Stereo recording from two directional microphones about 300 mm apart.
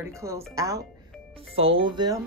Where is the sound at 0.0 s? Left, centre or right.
Centre.